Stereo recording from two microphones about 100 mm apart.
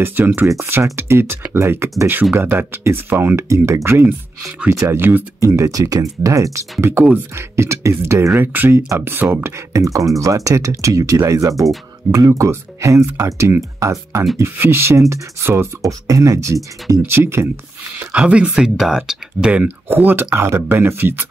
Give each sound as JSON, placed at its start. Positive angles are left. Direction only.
{"t": 0.0, "sound": "speech", "side_deg": -25}
{"t": 5.4, "sound": "speech", "side_deg": -35}
{"t": 17.9, "sound": "speech", "side_deg": -10}